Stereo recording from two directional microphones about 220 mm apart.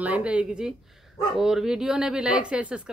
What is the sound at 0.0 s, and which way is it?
Speech, 5° right (ahead or behind).